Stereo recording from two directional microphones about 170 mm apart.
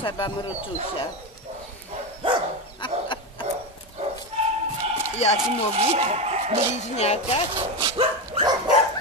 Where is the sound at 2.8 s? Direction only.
30° left (ahead or behind).